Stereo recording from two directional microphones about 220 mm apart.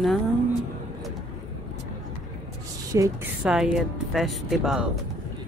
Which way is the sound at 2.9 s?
15° right (ahead or behind).